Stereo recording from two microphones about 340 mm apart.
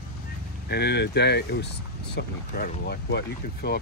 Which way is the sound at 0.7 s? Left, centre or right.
Left.